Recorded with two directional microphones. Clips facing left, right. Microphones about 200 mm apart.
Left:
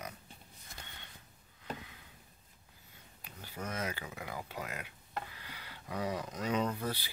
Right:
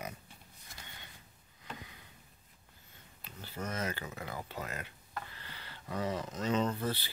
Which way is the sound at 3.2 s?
10° left (ahead or behind).